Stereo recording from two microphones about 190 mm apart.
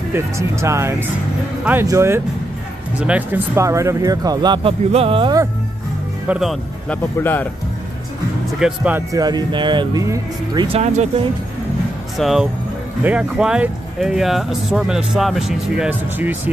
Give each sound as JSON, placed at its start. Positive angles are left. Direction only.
{"t": 0.1, "sound": "speech", "side_deg": -15}
{"t": 6.2, "sound": "speech", "side_deg": -5}
{"t": 7.2, "sound": "speech", "side_deg": 10}
{"t": 8.5, "sound": "speech", "side_deg": -5}
{"t": 9.1, "sound": "speech", "side_deg": -20}
{"t": 10.8, "sound": "speech", "side_deg": -35}
{"t": 12.2, "sound": "speech", "side_deg": 0}